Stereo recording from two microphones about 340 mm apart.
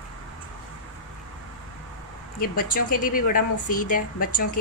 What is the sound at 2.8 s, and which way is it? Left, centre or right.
Speech, left.